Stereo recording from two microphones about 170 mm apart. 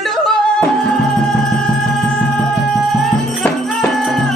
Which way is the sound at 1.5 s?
5° left (ahead or behind).